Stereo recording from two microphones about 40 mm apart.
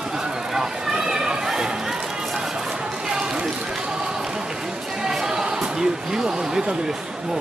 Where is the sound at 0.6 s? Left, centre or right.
Centre.